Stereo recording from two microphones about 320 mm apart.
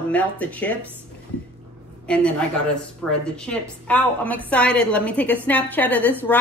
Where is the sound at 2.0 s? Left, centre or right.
Centre.